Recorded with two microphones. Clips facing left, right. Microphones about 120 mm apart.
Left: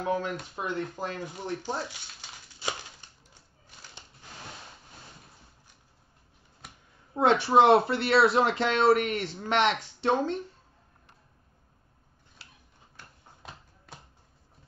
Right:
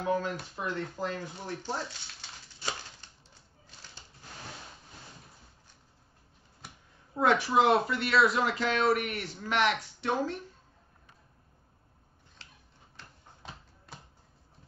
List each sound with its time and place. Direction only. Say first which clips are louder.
0.0 s speech: left 1 dB; 20° left (ahead or behind)
7.2 s speech: left 4 dB; 25° left (ahead or behind)